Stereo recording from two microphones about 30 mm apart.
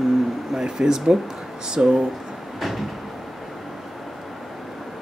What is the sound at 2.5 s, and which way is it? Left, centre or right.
Cupboard open or close, centre.